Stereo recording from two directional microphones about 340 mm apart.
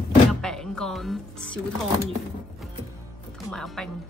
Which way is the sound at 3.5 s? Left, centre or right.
Centre.